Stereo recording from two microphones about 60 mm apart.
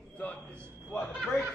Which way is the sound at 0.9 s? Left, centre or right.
Left.